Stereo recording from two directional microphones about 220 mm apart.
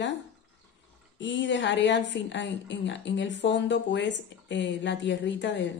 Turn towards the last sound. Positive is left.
turn(degrees=55)  # may be behind; listen again after turning